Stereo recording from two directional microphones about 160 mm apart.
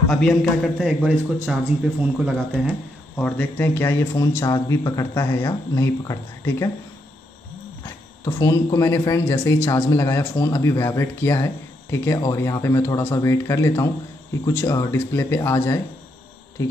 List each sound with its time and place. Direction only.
0.1 s a man's voice: 5° left (ahead or behind)
3.2 s speech: 5° left (ahead or behind)
7.8 s speech: 20° left (ahead or behind)